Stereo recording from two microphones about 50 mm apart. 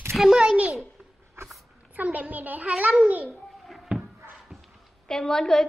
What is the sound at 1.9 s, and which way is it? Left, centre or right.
A child's voice, right.